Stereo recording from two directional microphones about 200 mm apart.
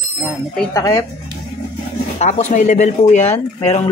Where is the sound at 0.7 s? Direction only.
15° left (ahead or behind).